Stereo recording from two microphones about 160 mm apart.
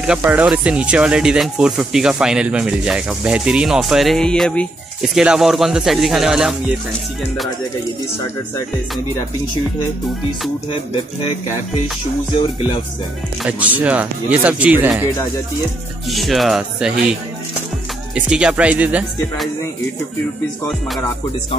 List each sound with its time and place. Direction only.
0.0 s speech: 5° right (ahead or behind)
13.4 s speech: 10° right (ahead or behind)
16.1 s speech: centre (ahead or behind)